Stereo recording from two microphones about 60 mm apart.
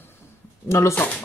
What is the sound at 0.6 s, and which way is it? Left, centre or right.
Speech, left.